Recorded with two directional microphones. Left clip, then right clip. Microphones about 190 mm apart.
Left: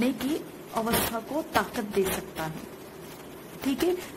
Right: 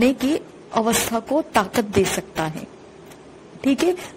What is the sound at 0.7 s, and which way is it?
Speech, 35° right (ahead or behind).